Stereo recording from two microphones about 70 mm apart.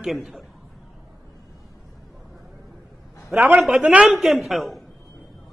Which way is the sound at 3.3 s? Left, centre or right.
Right.